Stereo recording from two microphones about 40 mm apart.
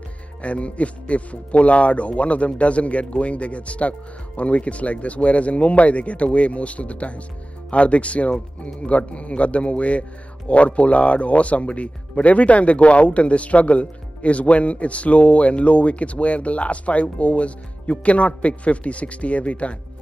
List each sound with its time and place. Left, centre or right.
0.4 s speech: left